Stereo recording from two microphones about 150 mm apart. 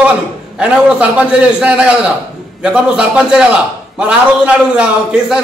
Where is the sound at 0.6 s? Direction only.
10° right (ahead or behind).